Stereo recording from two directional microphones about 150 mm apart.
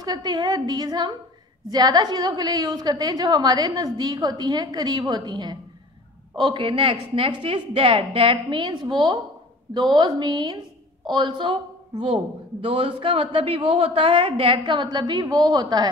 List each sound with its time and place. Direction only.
0.0 s a woman's voice: 30° right (ahead or behind)
12.6 s a woman's voice: 40° right (ahead or behind)